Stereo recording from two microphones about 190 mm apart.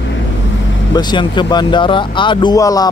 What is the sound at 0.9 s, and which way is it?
Speech, 25° left (ahead or behind).